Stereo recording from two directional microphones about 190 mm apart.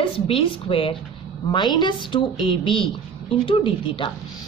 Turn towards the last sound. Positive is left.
turn(degrees=25)  # may be behind; listen again after turning